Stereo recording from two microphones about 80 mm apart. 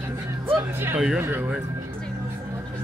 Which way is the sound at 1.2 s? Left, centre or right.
Right.